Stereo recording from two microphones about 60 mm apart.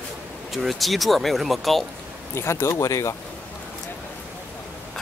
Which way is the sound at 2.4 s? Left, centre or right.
Left.